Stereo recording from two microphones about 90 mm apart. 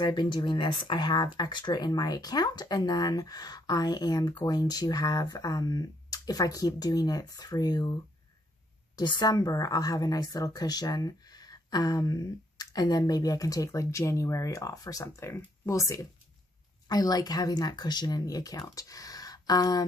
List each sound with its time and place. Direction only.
0.0 s speech: 55° left (ahead or behind)